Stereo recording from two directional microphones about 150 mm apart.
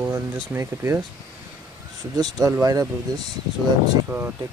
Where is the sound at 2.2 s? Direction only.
25° right (ahead or behind).